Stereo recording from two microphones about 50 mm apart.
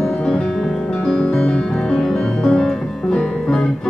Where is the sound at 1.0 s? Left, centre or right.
Centre.